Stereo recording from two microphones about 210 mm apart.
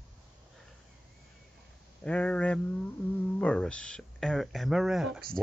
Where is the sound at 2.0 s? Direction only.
5° left (ahead or behind).